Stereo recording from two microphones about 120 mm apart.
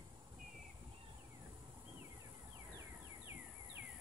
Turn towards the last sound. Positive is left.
turn(degrees=-20)  # may be behind; listen again after turning